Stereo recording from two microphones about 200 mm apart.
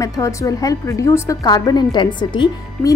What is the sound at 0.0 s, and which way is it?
Speech, 15° left (ahead or behind).